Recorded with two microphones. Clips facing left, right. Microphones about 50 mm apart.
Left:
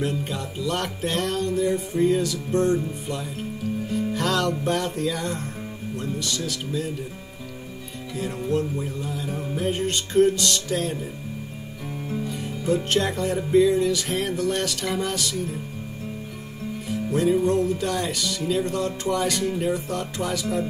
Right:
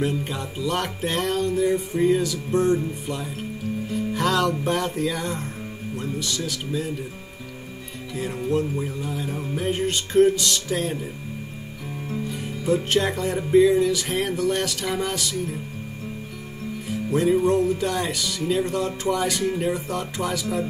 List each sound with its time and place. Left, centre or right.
0.0 s music: centre
8.2 s music: centre
12.3 s music: centre
17.1 s music: centre